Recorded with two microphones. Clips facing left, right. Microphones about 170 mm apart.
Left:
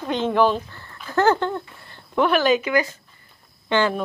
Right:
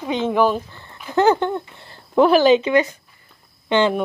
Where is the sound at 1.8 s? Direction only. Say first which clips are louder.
Right 6 dB; 30° right (ahead or behind).